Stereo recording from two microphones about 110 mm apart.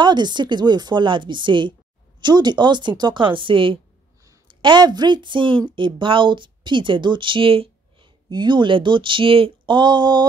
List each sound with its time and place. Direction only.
0.0 s speech: 40° right (ahead or behind)